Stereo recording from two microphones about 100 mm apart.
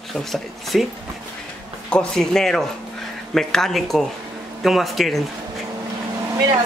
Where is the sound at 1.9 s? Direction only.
5° left (ahead or behind).